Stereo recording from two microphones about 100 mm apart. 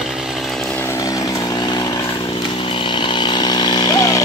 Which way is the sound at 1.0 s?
40° left (ahead or behind).